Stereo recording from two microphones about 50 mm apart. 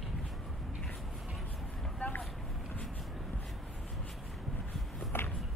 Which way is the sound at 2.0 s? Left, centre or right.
Left.